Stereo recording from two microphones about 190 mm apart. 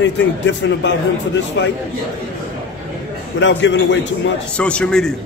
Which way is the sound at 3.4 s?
75° left (ahead or behind).